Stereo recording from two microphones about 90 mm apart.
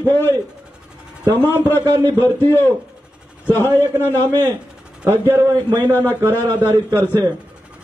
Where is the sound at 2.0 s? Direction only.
25° left (ahead or behind).